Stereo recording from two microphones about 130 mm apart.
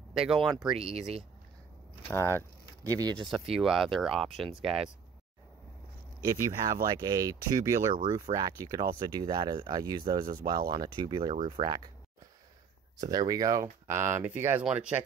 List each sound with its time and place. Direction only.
0.5 s speech: centre (ahead or behind)
0.7 s speech: 50° right (ahead or behind)
2.0 s speech: 20° left (ahead or behind)
2.8 s speech: 30° right (ahead or behind)
3.5 s speech: centre (ahead or behind)
6.2 s speech: 25° right (ahead or behind)
7.9 s speech: 35° right (ahead or behind)
12.9 s speech: 30° right (ahead or behind); by 15.0 s 10° right (ahead or behind)